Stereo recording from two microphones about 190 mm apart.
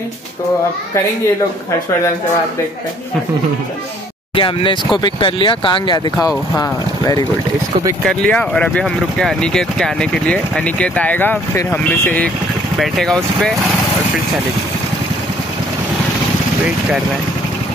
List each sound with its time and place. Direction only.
4.4 s speech: 25° left (ahead or behind)
8.0 s speech: 5° left (ahead or behind)